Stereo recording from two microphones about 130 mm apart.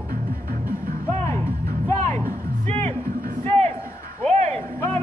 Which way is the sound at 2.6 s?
55° right (ahead or behind).